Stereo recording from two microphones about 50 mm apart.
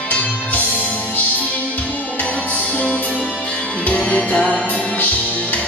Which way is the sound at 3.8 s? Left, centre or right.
Left.